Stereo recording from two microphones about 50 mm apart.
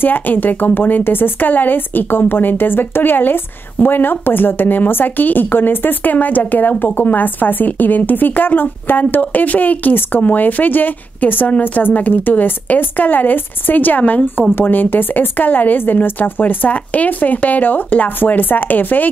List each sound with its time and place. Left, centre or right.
0.0 s speech: left